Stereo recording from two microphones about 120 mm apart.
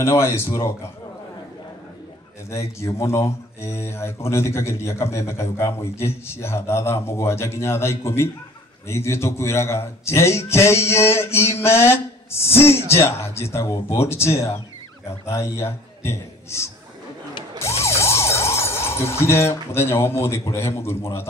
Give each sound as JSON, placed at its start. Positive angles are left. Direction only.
{"t": 0.0, "sound": "speech", "side_deg": 20}
{"t": 2.5, "sound": "a man's voice", "side_deg": 25}
{"t": 17.8, "sound": "speech", "side_deg": 25}